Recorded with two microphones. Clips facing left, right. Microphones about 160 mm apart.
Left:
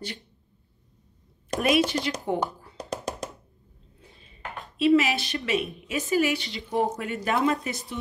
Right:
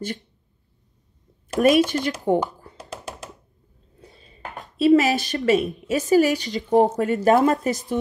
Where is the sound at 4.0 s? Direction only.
40° right (ahead or behind).